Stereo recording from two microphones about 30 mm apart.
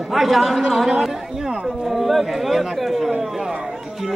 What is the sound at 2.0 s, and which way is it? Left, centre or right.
Chatter, centre.